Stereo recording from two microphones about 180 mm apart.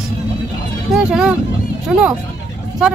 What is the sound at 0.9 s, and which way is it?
Speech, 5° right (ahead or behind).